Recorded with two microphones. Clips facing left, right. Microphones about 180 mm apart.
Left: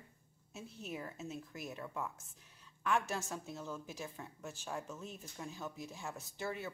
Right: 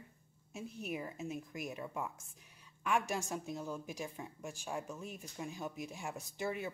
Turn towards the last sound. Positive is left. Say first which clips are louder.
# right 3 dB
turn(degrees=-15)  # may be behind; listen again after turning